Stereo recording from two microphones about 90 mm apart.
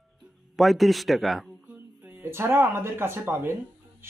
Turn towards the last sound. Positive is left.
turn(degrees=-25)  # may be behind; listen again after turning